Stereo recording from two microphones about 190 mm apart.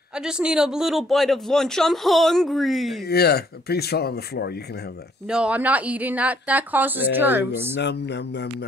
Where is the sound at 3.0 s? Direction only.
55° left (ahead or behind).